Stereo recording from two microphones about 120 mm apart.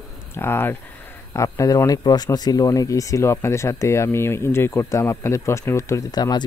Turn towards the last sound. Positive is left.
turn(degrees=35)  # may be behind; listen again after turning